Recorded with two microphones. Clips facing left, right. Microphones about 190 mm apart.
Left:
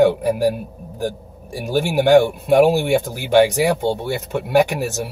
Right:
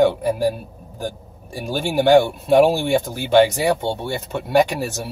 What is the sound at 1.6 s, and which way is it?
Speech, 10° left (ahead or behind).